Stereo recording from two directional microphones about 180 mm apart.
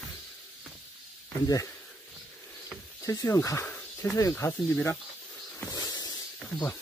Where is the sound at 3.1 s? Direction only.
15° left (ahead or behind).